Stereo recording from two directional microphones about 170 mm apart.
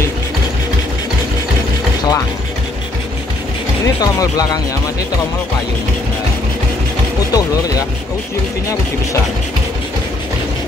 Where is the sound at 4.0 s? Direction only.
20° left (ahead or behind).